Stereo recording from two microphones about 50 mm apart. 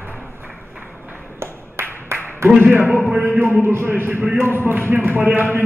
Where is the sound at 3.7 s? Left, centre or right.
Right.